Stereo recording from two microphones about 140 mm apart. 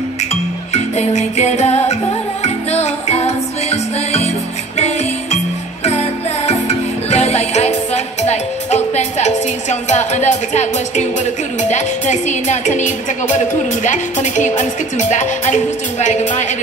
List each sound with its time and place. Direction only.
0.9 s music: 55° left (ahead or behind)
11.7 s speech: 55° left (ahead or behind)